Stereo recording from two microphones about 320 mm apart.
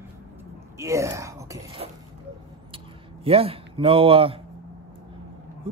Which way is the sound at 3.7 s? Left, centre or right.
Centre.